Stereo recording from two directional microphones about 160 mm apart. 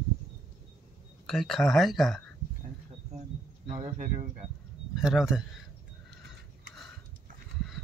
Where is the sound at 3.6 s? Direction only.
50° right (ahead or behind).